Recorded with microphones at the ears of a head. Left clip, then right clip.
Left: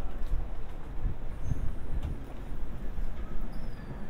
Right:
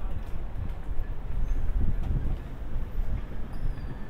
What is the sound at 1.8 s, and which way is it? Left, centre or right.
Vehicle, right.